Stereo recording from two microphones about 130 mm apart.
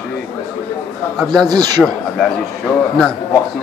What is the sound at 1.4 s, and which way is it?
Speech, 30° right (ahead or behind).